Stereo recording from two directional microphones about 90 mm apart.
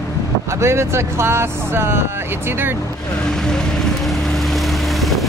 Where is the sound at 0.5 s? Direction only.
30° right (ahead or behind).